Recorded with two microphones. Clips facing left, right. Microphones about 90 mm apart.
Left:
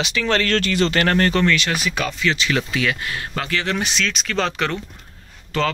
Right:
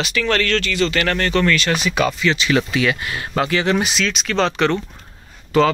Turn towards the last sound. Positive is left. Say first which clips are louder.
# right 7 dB
turn(degrees=-10)  # may be behind; listen again after turning